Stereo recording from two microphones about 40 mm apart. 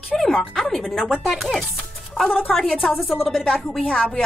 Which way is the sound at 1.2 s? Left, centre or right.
Centre.